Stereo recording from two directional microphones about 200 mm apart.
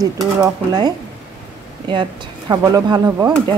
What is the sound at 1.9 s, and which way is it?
Speech, 25° right (ahead or behind).